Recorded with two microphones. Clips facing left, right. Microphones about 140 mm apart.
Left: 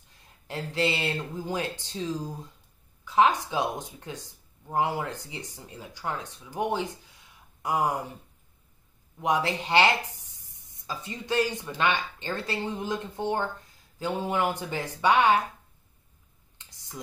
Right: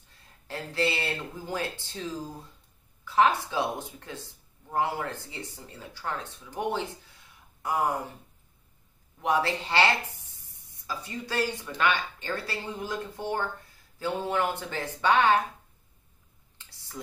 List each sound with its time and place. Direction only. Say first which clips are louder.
0.5 s speech: left 1 dB; 15° left (ahead or behind)
3.2 s speech: left 1 dB; 15° left (ahead or behind)
9.2 s speech: even; 15° left (ahead or behind)
16.5 s clicking: right 1 dB; 20° left (ahead or behind)